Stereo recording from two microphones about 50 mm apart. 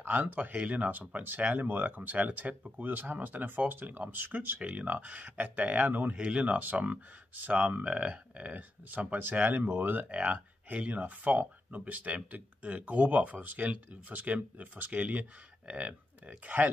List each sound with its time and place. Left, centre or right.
0.0 s speech: right
6.1 s speech: right